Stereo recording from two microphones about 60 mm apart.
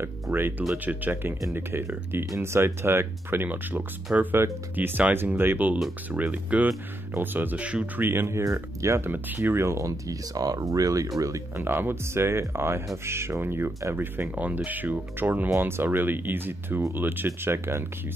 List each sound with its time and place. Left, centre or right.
0.0 s speech: right
8.0 s speech: right
9.1 s speech: right
9.6 s speech: right
11.5 s speech: right
14.3 s speech: right
17.5 s speech: right